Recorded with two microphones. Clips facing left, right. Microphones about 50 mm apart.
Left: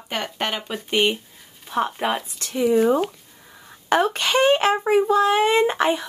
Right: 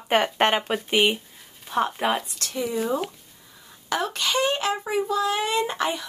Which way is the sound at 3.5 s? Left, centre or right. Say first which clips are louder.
Left 8 dB; left.